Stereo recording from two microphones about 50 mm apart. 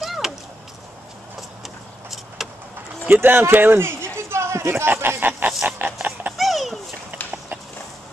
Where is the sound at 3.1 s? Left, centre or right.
Right.